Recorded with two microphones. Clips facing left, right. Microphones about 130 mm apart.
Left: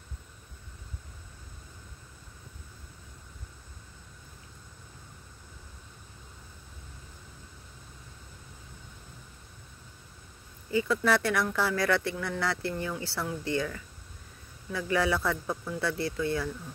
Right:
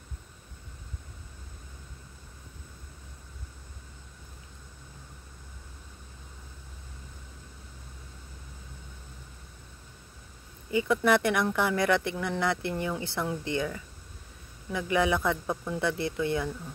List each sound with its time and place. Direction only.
10.7 s speech: 20° right (ahead or behind)